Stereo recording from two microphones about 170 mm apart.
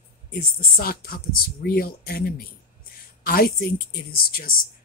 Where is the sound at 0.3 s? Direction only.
60° left (ahead or behind).